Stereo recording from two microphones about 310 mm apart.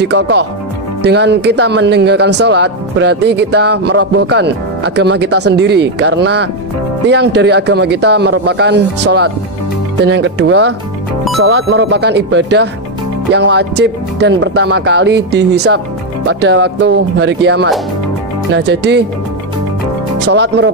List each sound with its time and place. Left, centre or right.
0.0 s speech: right
20.2 s speech: right